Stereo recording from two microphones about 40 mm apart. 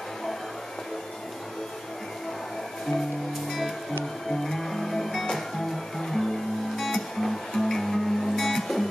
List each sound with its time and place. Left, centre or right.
4.3 s music: centre